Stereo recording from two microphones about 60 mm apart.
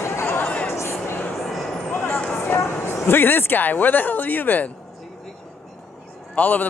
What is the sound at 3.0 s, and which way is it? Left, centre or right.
Speech, left.